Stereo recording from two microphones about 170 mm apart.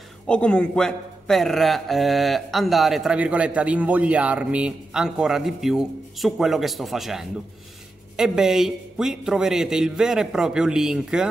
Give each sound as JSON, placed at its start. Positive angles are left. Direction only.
{"t": 0.3, "sound": "speech", "side_deg": 5}